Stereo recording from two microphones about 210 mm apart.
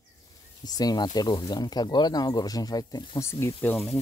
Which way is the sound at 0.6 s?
20° left (ahead or behind).